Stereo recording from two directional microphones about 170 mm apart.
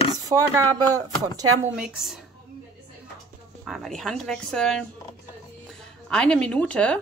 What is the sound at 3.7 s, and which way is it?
Speech, centre (ahead or behind).